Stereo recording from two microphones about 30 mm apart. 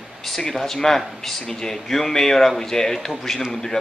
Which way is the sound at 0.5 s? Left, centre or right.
Centre.